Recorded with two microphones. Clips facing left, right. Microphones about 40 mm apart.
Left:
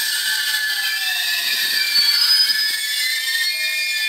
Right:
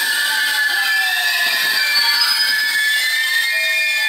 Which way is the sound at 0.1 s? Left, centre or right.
Right.